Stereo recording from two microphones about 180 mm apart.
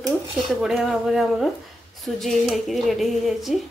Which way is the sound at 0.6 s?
Centre (ahead or behind).